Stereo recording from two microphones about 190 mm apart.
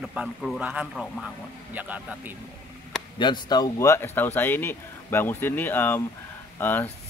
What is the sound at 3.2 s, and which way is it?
Speech, 20° left (ahead or behind).